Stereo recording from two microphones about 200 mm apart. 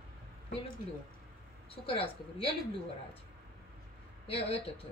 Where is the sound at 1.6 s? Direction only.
30° left (ahead or behind).